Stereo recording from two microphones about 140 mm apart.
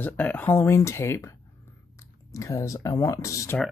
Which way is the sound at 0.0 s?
10° left (ahead or behind).